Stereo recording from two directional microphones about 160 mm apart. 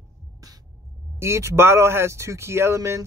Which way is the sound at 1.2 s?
15° right (ahead or behind).